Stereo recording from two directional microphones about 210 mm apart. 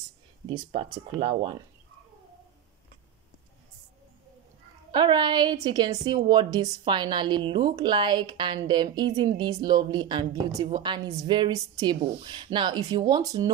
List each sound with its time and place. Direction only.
0.5 s a woman's voice: 25° right (ahead or behind)
4.9 s a woman's voice: 20° right (ahead or behind)